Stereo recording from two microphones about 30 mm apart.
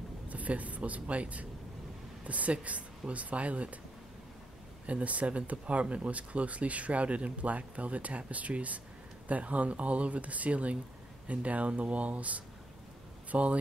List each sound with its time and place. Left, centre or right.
0.3 s speech: right
4.8 s speech: right